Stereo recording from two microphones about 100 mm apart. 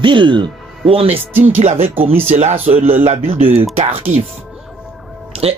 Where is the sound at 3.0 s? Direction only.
70° right (ahead or behind).